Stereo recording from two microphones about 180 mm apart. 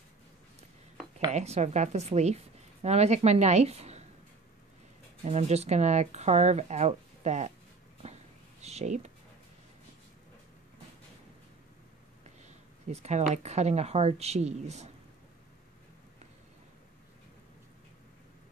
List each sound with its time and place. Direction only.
1.3 s a woman's voice: 40° right (ahead or behind)
5.2 s a woman's voice: 35° right (ahead or behind)
8.0 s a sound: 35° right (ahead or behind)
8.6 s speech: 40° right (ahead or behind)
12.4 s a woman's voice: 40° right (ahead or behind)